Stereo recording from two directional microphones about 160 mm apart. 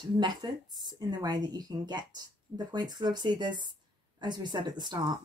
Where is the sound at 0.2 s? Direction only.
25° right (ahead or behind).